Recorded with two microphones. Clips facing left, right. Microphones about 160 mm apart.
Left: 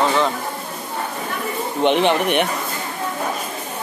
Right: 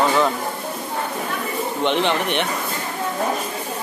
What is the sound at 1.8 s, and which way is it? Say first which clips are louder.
Speech: left 4 dB; 15° left (ahead or behind).